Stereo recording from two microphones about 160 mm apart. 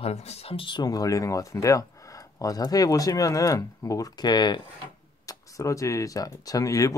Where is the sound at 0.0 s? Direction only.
40° left (ahead or behind).